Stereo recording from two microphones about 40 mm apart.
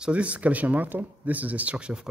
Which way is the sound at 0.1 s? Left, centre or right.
Right.